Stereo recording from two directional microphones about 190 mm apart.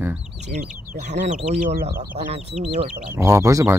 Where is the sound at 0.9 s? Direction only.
35° right (ahead or behind).